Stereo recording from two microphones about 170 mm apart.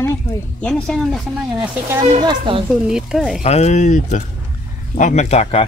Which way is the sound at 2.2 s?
30° right (ahead or behind).